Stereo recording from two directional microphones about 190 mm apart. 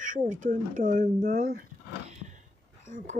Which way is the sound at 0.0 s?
45° right (ahead or behind).